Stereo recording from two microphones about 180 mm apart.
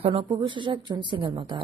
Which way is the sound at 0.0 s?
30° right (ahead or behind).